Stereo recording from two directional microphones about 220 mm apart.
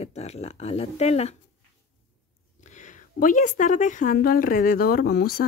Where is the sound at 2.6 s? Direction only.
35° left (ahead or behind).